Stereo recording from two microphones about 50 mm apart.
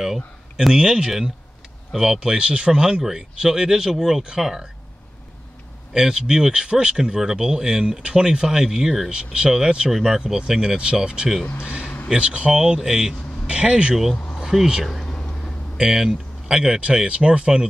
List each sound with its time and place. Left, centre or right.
0.0 s speech: centre
5.9 s speech: centre
9.1 s speech: centre
9.8 s speech: centre; by 13.9 s right
14.1 s a sound: centre
14.4 s speech: centre
14.9 s a sound: centre
15.8 s speech: centre